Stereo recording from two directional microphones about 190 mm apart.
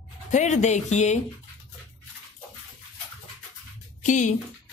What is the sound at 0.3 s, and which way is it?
Speech, 40° left (ahead or behind).